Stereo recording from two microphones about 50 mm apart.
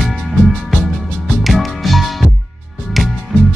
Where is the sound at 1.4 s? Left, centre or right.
Centre.